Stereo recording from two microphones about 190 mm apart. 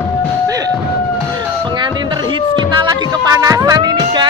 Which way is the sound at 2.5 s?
20° right (ahead or behind).